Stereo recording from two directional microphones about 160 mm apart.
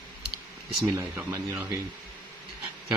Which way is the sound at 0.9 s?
15° right (ahead or behind).